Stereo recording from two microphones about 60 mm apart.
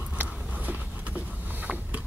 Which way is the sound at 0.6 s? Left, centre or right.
Right.